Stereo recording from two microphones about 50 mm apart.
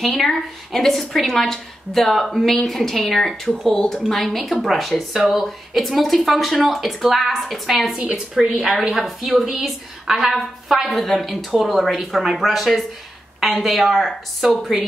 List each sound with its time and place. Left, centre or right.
0.0 s a woman's voice: centre
7.9 s a woman's voice: centre
8.8 s a woman's voice: centre